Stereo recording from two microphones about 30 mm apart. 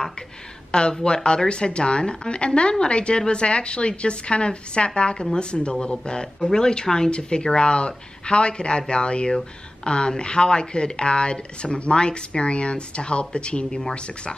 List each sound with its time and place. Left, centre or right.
0.7 s a woman's voice: left